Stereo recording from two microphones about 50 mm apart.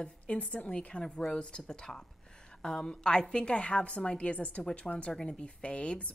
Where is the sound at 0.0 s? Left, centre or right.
Left.